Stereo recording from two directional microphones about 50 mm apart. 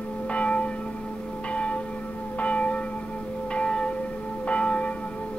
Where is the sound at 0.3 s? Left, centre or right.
Left.